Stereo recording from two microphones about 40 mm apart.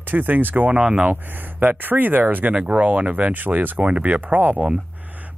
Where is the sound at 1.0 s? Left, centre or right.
Right.